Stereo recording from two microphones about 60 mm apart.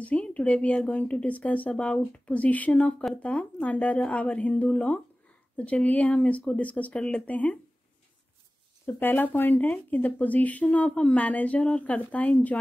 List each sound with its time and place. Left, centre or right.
0.0 s speech: left
8.8 s speech: left